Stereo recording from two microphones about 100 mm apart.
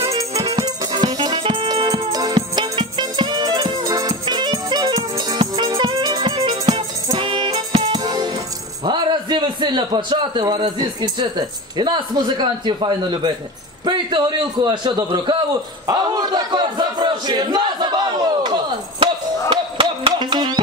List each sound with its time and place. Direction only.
0.0 s music: 30° right (ahead or behind); by 1.7 s 60° right (ahead or behind)
1.7 s music: 40° right (ahead or behind)
7.2 s music: 60° right (ahead or behind); by 8.3 s 40° right (ahead or behind)
8.8 s a man's voice: 50° right (ahead or behind)
19.5 s music: 55° right (ahead or behind)